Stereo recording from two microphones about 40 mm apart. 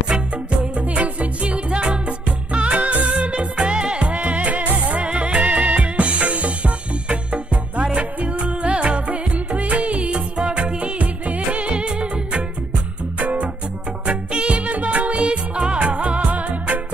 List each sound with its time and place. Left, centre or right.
0.7 s music: right
5.0 s music: right